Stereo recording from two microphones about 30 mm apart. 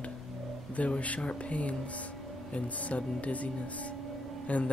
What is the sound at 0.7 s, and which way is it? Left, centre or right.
Speech, left.